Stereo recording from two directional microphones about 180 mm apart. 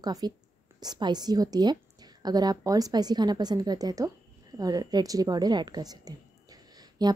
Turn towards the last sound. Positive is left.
turn(degrees=-20)  # may be behind; listen again after turning